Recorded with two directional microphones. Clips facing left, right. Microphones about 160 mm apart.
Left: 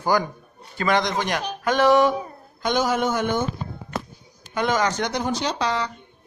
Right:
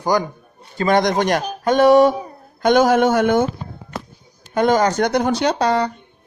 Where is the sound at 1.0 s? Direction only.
45° right (ahead or behind).